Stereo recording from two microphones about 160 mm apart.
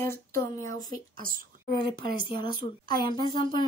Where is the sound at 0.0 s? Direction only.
15° left (ahead or behind).